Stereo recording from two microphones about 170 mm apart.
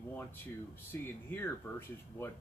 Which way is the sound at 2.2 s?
15° left (ahead or behind).